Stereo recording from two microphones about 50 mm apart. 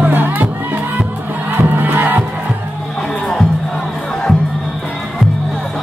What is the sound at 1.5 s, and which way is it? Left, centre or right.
Music, right.